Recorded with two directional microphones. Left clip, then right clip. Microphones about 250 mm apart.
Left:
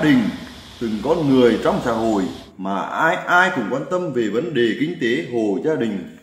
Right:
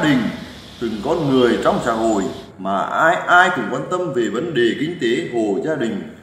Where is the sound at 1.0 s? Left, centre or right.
Left.